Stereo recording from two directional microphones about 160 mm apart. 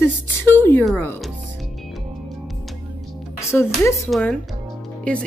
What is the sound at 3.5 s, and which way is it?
Speech, 15° left (ahead or behind).